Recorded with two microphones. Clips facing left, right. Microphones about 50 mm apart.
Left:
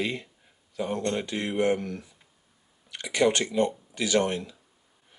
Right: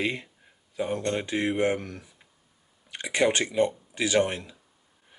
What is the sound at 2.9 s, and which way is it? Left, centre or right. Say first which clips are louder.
Speech: even; right.